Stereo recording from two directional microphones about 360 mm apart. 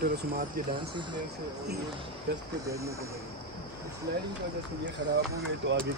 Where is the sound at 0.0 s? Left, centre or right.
Right.